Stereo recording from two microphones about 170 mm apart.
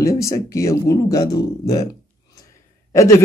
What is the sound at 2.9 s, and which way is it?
Speech, 20° left (ahead or behind).